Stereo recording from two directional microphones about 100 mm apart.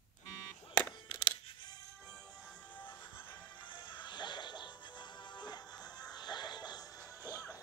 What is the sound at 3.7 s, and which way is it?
Music, 50° left (ahead or behind).